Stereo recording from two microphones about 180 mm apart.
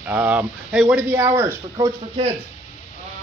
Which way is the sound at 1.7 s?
30° right (ahead or behind).